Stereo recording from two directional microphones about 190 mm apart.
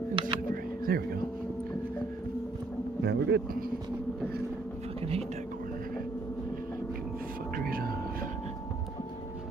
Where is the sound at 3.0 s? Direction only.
60° right (ahead or behind).